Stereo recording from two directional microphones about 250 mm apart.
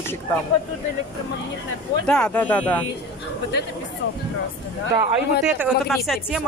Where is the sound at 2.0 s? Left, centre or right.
Centre.